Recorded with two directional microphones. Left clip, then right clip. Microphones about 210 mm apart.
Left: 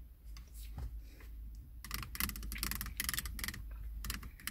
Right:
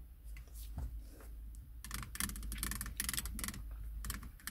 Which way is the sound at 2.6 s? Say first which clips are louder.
Left 2 dB; 15° right (ahead or behind).